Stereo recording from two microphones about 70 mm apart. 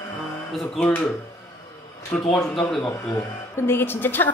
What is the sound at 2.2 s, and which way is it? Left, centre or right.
Speech, centre.